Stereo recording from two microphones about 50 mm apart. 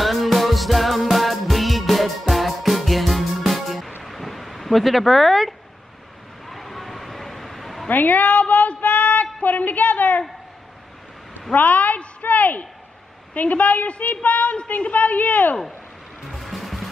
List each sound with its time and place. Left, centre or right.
0.0 s music: centre
4.0 s a sound: centre
6.5 s a sound: centre
7.9 s a woman's voice: left
11.5 s a woman's voice: left
16.3 s music: centre